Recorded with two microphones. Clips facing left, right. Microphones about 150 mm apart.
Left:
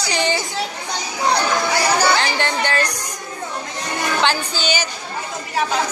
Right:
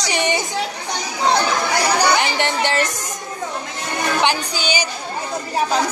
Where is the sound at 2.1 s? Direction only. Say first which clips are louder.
Right 1 dB; 20° right (ahead or behind).